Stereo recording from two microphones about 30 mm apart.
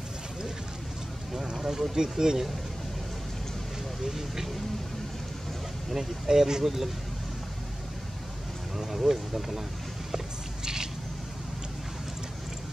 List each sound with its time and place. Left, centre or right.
1.3 s speech: centre
4.0 s speech: centre
5.9 s speech: centre
8.7 s speech: centre
10.1 s a sound: centre